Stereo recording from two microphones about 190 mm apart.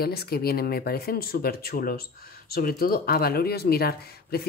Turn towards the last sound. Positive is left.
turn(degrees=55)  # may be behind; listen again after turning